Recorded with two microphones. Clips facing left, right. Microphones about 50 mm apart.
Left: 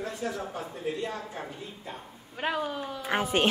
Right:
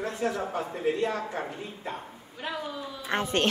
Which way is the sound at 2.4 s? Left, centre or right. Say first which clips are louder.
Left 4 dB; left.